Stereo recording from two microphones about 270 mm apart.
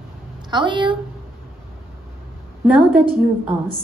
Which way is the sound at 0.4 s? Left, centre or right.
Centre.